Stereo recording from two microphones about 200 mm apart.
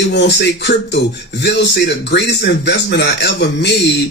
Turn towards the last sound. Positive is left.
turn(degrees=60)  # may be behind; listen again after turning